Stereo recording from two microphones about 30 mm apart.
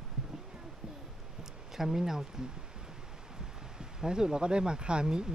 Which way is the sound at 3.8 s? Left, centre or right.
Right.